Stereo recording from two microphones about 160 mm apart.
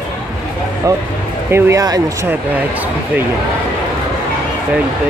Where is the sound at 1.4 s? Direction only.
15° right (ahead or behind).